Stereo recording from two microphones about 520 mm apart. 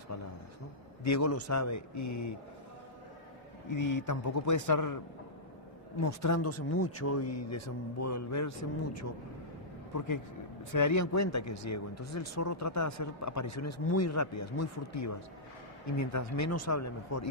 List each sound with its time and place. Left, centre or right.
1.0 s speech: left
3.6 s speech: left